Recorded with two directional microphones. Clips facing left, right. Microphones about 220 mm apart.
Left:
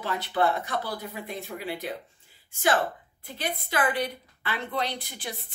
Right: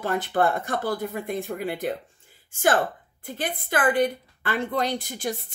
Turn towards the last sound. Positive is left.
turn(degrees=-45)  # may be behind; listen again after turning